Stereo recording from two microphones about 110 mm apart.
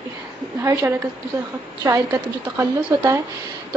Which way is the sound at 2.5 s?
25° right (ahead or behind).